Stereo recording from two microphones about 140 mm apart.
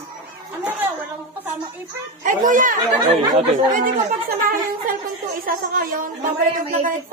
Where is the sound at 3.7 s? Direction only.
80° right.